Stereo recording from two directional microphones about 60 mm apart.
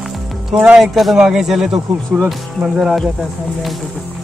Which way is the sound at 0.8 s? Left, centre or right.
Centre.